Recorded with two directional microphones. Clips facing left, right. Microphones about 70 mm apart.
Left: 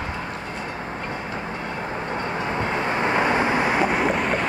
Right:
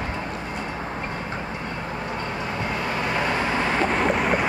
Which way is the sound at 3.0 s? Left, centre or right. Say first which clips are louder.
Left 4 dB; left.